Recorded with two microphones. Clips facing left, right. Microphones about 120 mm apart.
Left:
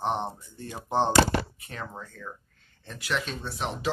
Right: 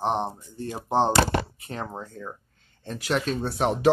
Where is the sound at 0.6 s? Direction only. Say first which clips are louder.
Right 3 dB; 40° right (ahead or behind).